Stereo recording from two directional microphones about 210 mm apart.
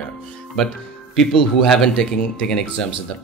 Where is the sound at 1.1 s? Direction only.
Centre (ahead or behind).